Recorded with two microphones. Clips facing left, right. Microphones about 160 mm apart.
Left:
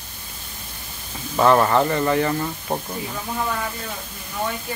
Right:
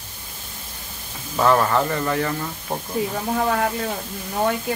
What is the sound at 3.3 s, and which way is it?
Speech, 60° right (ahead or behind).